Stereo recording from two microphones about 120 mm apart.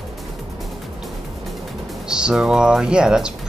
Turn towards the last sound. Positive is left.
turn(degrees=-5)  # may be behind; listen again after turning